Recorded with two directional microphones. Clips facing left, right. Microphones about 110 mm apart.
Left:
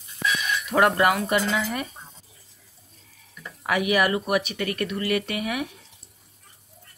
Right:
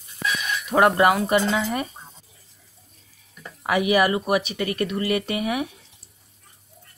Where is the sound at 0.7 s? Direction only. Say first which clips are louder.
Right 3 dB; 25° right (ahead or behind).